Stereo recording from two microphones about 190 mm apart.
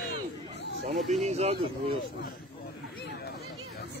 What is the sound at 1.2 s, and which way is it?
Speech, 35° right (ahead or behind).